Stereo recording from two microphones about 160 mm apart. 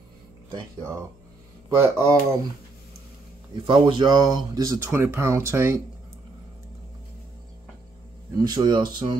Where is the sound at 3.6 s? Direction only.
30° right (ahead or behind).